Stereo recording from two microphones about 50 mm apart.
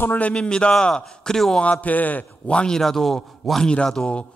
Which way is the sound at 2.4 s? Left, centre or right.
Centre.